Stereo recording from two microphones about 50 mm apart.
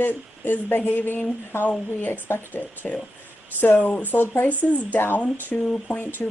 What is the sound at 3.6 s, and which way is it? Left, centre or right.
Speech, left.